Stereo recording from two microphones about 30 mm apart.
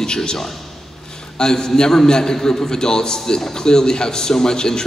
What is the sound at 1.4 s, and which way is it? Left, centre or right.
A man's voice, left.